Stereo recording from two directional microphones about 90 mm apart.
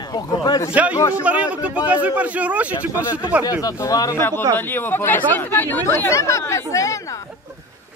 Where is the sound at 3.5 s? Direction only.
40° left (ahead or behind).